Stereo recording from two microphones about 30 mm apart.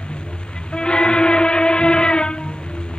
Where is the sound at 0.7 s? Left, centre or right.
Left.